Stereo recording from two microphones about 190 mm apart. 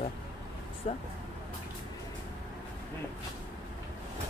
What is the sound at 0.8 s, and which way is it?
Speech, 35° left (ahead or behind).